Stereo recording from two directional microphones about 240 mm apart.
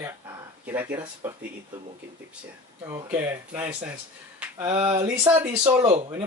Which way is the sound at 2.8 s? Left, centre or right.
Centre.